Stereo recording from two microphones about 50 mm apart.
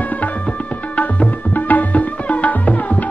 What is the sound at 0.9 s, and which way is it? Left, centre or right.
Tabla, left.